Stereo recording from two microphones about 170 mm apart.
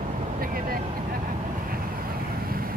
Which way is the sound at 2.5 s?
60° right (ahead or behind).